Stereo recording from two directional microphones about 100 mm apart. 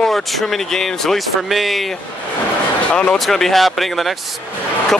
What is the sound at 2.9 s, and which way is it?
Speech, 5° left (ahead or behind).